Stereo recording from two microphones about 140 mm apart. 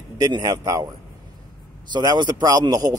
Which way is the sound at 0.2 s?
25° right (ahead or behind).